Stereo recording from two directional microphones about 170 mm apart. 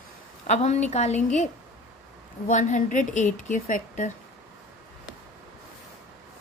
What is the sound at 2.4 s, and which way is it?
A woman's voice, 45° left (ahead or behind).